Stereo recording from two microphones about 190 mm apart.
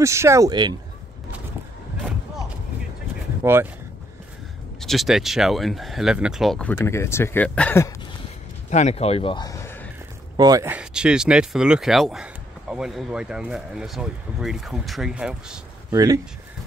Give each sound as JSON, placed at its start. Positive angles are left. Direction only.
{"t": 0.0, "sound": "speech", "side_deg": -15}
{"t": 3.4, "sound": "speech", "side_deg": -10}
{"t": 4.7, "sound": "speech", "side_deg": 0}
{"t": 6.7, "sound": "speech", "side_deg": 15}
{"t": 8.6, "sound": "speech", "side_deg": 35}
{"t": 10.3, "sound": "speech", "side_deg": -20}
{"t": 15.9, "sound": "speech", "side_deg": -20}